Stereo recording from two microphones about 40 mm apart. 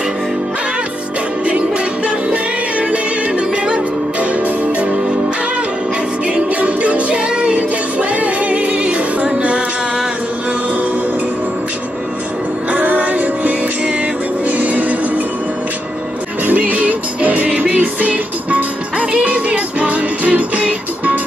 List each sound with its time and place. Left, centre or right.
1.4 s music: right
6.2 s music: right
12.7 s music: right
14.6 s music: right
16.4 s music: right